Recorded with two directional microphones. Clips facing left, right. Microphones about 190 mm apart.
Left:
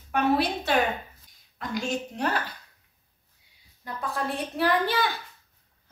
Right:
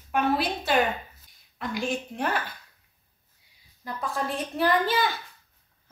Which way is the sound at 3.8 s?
Centre (ahead or behind).